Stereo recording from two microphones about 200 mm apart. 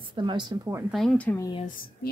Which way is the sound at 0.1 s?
25° right (ahead or behind).